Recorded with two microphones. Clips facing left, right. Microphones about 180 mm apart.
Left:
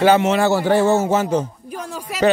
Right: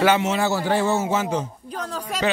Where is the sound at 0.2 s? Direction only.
60° left (ahead or behind).